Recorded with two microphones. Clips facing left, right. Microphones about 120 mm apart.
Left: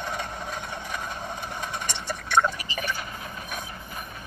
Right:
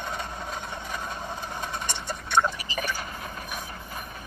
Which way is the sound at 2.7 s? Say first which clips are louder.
Even; 40° right (ahead or behind).